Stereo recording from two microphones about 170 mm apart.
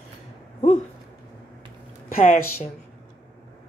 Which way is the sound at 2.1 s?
50° left (ahead or behind).